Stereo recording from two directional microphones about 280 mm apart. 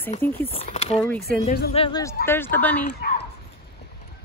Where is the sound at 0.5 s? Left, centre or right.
Left; by 2.9 s centre.